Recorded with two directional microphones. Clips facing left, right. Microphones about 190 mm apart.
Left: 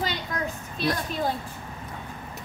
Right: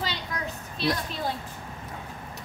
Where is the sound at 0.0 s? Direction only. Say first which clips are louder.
Left 3 dB; 50° left (ahead or behind).